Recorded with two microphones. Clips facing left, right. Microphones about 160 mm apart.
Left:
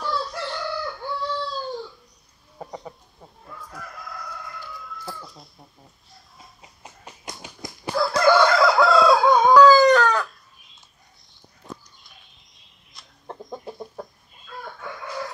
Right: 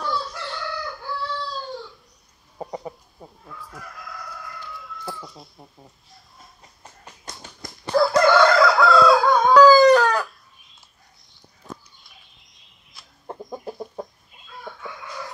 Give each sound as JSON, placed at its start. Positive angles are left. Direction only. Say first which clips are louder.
{"t": 0.1, "sound": "chicken", "louder": "even", "side_deg": 0}
{"t": 2.6, "sound": "chicken", "louder": "right 4 dB", "side_deg": -20}
{"t": 3.8, "sound": "chicken", "louder": "left 1 dB", "side_deg": 0}
{"t": 6.1, "sound": "a sound", "louder": "even", "side_deg": 0}
{"t": 7.8, "sound": "chicken", "louder": "right 3 dB", "side_deg": 0}
{"t": 11.4, "sound": "arrow", "louder": "even", "side_deg": 0}
{"t": 14.5, "sound": "chicken", "louder": "left 4 dB", "side_deg": 60}